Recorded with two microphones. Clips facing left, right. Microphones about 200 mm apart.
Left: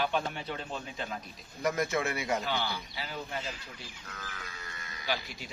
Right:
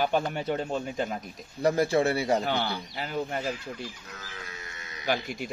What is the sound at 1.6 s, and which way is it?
Speech, 30° right (ahead or behind).